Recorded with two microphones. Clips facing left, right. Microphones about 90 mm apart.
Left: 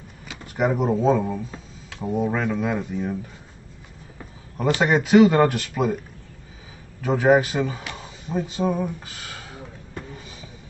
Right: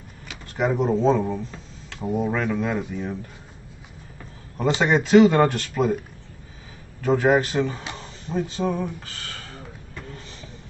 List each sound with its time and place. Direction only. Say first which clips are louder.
0.3 s speech: left 1 dB; 5° left (ahead or behind)
4.8 s speech: even; 5° left (ahead or behind)
7.0 s speech: left 1 dB; 5° left (ahead or behind)
7.9 s a sound: even; 5° left (ahead or behind)
10.1 s music: even; 10° left (ahead or behind)